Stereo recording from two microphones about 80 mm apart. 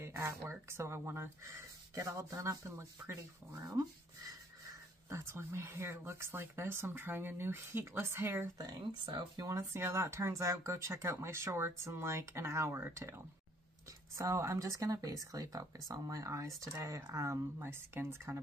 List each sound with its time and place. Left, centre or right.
0.0 s speech: right
5.1 s speech: right
8.5 s speech: right
9.5 s speech: right